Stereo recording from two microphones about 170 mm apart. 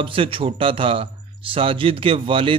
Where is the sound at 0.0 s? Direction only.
30° right (ahead or behind).